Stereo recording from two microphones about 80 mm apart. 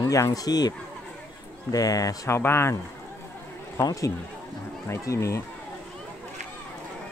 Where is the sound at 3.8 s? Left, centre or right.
Left.